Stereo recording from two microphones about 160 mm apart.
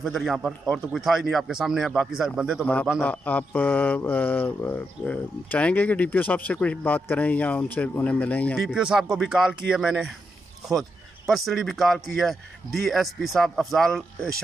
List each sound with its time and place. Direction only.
0.0 s speech: centre (ahead or behind)
2.6 s speech: 10° left (ahead or behind)
8.6 s speech: 5° right (ahead or behind)